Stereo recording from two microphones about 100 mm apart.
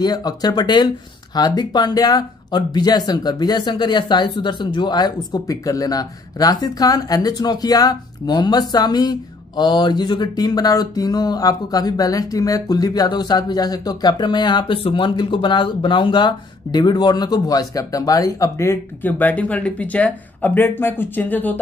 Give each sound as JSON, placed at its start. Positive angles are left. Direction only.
{"t": 0.0, "sound": "speech", "side_deg": 40}
{"t": 19.0, "sound": "speech", "side_deg": 15}